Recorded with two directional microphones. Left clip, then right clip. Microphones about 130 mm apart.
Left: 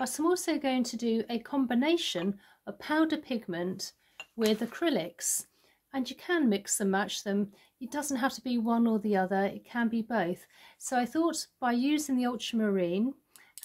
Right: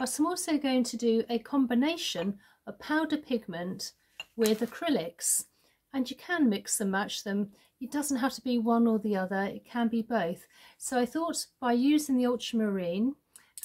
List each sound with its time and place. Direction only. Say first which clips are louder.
0.0 s speech: left 1 dB; 40° left (ahead or behind)